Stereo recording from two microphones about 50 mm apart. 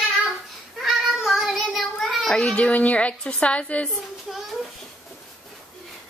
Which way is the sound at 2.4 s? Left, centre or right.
Left.